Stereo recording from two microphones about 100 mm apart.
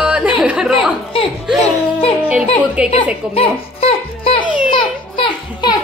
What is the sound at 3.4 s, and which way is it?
Music, 70° left (ahead or behind).